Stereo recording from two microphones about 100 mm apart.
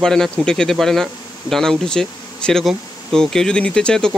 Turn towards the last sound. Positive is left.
turn(degrees=10)  # may be behind; listen again after turning